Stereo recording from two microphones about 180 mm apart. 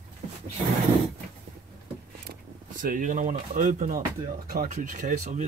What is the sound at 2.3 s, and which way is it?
Speech, 50° right (ahead or behind).